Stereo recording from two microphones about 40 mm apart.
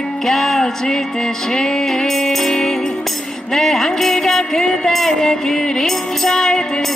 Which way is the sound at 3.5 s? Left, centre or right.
Centre.